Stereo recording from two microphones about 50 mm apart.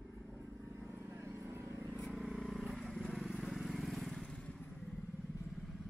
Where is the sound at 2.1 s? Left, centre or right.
Centre.